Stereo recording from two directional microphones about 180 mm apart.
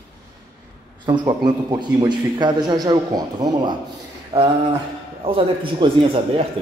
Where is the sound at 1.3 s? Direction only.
25° right (ahead or behind).